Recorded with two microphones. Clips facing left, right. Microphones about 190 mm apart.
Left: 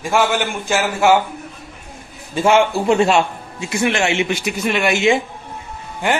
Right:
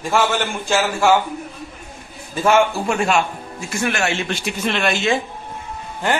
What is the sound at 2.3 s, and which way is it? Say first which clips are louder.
A man's voice: left 2 dB; 20° left (ahead or behind).